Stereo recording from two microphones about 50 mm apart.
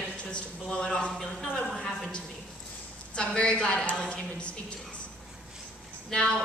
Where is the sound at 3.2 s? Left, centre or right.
Centre.